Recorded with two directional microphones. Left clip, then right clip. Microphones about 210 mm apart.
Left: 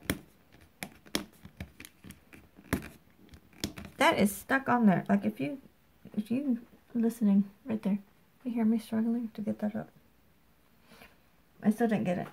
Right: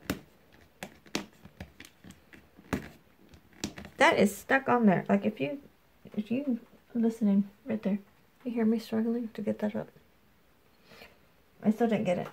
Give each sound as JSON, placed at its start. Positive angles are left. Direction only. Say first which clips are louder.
{"t": 3.9, "sound": "speech", "louder": "right 3 dB", "side_deg": 0}
{"t": 6.1, "sound": "speech", "louder": "even", "side_deg": 15}
{"t": 7.6, "sound": "speech", "louder": "right 2 dB", "side_deg": 10}
{"t": 8.5, "sound": "speech", "louder": "right 2 dB", "side_deg": 0}
{"t": 11.6, "sound": "speech", "louder": "right 2 dB", "side_deg": 10}